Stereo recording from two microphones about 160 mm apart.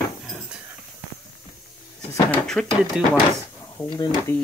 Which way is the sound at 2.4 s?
Centre (ahead or behind).